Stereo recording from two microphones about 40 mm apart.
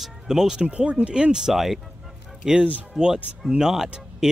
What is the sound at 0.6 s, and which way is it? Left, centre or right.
Speech, right.